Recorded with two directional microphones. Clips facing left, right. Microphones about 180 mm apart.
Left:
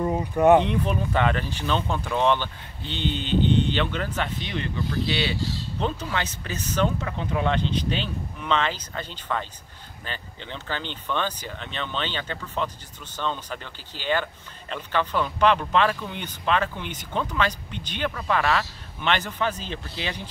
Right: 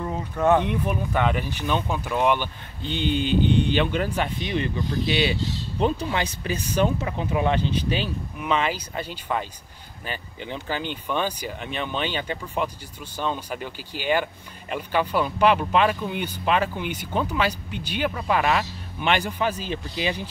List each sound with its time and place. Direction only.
0.0 s speech: 15° left (ahead or behind)
0.7 s speech: 10° right (ahead or behind)